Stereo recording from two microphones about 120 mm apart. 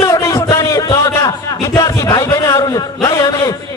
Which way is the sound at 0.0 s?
30° left (ahead or behind).